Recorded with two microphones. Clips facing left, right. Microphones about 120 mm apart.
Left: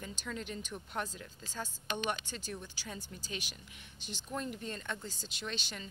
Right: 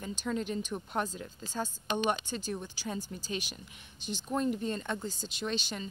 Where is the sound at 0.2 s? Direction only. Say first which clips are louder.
Right 9 dB; 30° right (ahead or behind).